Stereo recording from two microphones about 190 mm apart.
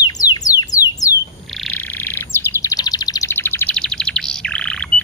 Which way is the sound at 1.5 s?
5° left (ahead or behind).